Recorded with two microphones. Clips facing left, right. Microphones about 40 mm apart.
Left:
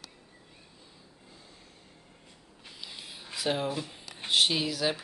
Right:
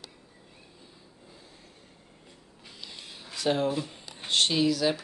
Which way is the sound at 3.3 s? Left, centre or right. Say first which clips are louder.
Right 4 dB; centre.